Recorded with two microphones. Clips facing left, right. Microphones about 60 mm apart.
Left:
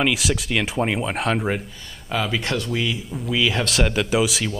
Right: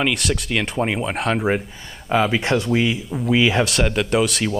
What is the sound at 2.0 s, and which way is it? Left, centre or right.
Speech, right.